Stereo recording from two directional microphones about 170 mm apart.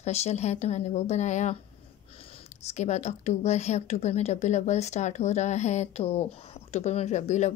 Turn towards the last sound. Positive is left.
turn(degrees=45)  # may be behind; listen again after turning